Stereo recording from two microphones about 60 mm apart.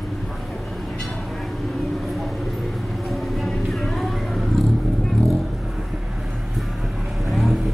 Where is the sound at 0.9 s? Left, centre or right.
Centre.